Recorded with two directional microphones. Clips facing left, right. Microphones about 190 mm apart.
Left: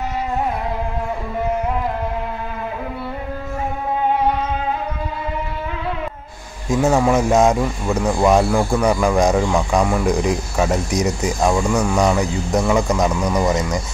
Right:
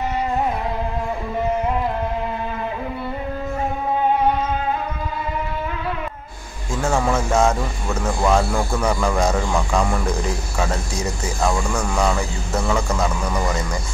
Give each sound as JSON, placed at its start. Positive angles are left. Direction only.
{"t": 6.7, "sound": "speech", "side_deg": 20}